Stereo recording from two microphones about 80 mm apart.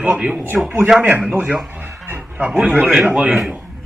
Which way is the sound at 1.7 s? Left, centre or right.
Right.